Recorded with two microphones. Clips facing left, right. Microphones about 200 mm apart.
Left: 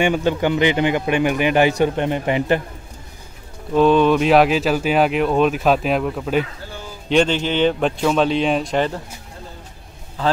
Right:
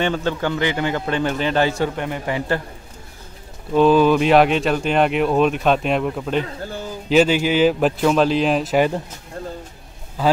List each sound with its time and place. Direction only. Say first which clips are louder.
0.0 s a man's voice: left 3 dB; 15° left (ahead or behind)
3.7 s speech: even; centre (ahead or behind)